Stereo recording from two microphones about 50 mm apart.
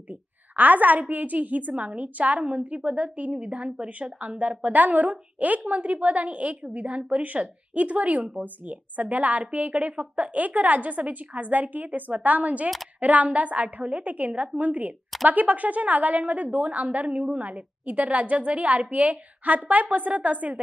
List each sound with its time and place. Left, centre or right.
0.1 s a woman's voice: right